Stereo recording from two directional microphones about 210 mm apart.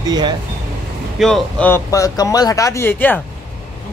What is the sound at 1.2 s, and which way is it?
Speech, 5° left (ahead or behind).